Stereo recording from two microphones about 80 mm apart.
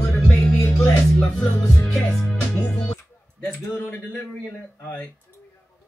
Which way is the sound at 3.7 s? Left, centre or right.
Left.